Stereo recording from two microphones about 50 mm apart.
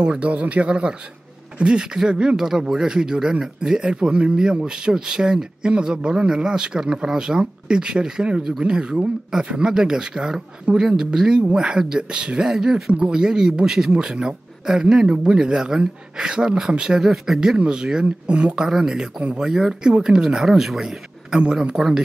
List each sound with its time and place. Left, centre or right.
0.0 s speech: right
12.4 s speech: centre
12.9 s speech: centre
17.0 s speech: centre
17.6 s speech: centre